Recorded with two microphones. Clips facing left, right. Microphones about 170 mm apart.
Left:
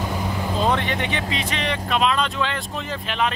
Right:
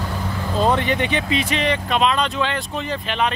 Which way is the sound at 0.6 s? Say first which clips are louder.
Right 4 dB; centre (ahead or behind).